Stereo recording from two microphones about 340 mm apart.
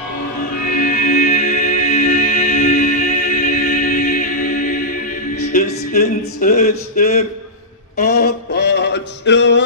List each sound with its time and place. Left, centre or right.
0.7 s music: left
7.0 s a man's voice: left
8.0 s a sound: left